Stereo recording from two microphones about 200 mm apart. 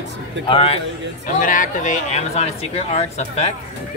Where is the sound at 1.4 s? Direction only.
40° left (ahead or behind).